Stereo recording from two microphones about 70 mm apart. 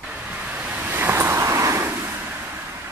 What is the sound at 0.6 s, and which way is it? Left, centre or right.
Waves, right.